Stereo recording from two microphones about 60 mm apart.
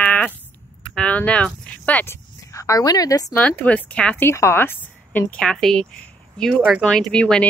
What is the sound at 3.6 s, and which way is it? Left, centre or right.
Speech, left.